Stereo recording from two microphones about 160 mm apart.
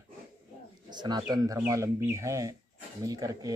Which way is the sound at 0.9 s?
25° right (ahead or behind).